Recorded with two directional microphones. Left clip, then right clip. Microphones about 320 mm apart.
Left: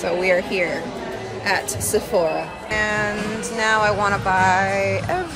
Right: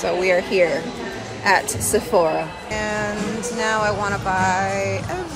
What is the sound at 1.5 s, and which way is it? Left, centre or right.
Speech, right.